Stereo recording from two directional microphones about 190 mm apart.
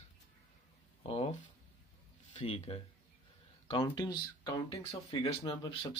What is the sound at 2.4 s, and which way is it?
Speech, 35° left (ahead or behind).